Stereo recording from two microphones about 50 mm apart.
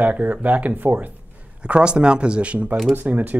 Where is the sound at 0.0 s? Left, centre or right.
Right.